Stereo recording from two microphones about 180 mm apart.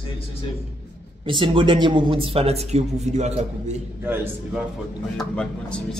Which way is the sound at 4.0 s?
10° right (ahead or behind).